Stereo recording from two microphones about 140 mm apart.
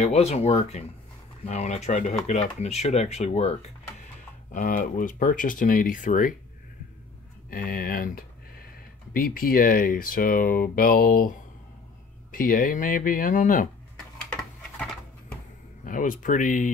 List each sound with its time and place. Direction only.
0.0 s speech: 50° left (ahead or behind)
4.5 s speech: 70° left (ahead or behind)
7.4 s speech: 90° left
12.3 s speech: 85° left; by 13.7 s 70° left (ahead or behind)
15.8 s speech: 70° left (ahead or behind)